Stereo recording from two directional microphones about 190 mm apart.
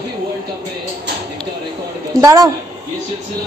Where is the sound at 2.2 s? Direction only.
20° right (ahead or behind).